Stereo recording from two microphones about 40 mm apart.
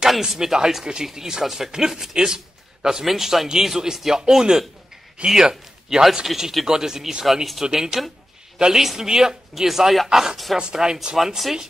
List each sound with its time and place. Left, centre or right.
0.0 s a man's voice: centre
11.1 s speech: centre